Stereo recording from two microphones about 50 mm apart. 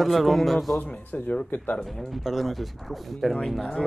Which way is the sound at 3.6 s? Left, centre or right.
Centre.